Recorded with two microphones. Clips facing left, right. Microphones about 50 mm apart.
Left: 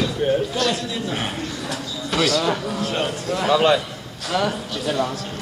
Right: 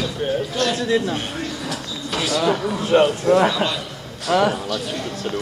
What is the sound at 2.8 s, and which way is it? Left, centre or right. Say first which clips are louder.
Speech: right 7 dB; right.